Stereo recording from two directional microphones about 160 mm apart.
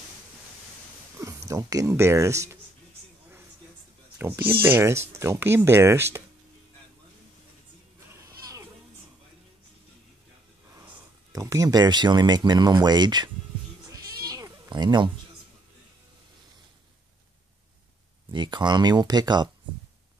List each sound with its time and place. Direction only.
1.2 s speech: 20° right (ahead or behind)
4.2 s speech: 15° right (ahead or behind)
8.2 s a sound: 20° right (ahead or behind)
11.3 s speech: 20° right (ahead or behind)
13.8 s cat: 20° right (ahead or behind)
18.3 s speech: 30° right (ahead or behind)